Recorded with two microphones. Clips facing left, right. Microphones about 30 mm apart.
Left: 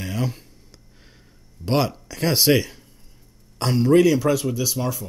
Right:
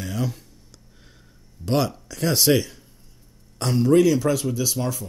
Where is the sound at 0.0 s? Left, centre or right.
Left.